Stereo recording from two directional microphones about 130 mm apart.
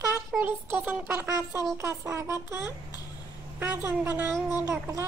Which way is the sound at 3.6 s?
15° right (ahead or behind).